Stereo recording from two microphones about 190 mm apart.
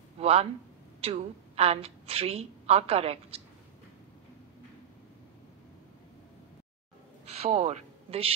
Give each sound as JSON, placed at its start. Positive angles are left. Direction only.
{"t": 0.2, "sound": "a sound", "side_deg": -30}
{"t": 1.0, "sound": "a woman's voice", "side_deg": -30}
{"t": 7.4, "sound": "speech", "side_deg": -35}